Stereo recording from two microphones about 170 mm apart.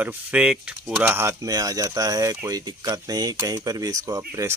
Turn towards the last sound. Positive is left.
turn(degrees=-20)  # may be behind; listen again after turning